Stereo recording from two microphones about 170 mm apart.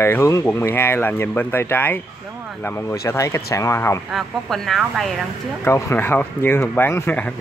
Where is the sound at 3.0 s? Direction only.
15° left (ahead or behind).